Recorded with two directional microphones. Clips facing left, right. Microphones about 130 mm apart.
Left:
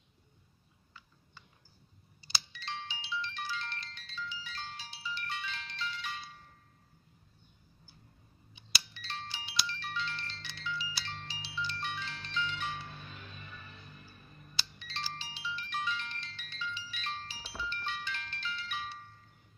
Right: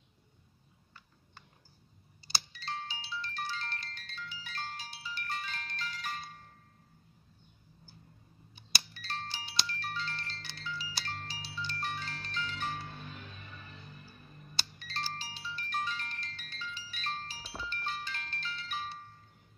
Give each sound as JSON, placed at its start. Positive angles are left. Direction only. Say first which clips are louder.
{"t": 2.2, "sound": "ringtone", "louder": "right 2 dB", "side_deg": -40}
{"t": 8.9, "sound": "music", "louder": "right 2 dB", "side_deg": -40}
{"t": 14.6, "sound": "ringtone", "louder": "right 2 dB", "side_deg": -45}